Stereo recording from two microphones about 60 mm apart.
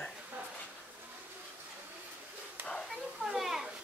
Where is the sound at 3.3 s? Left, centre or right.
Centre.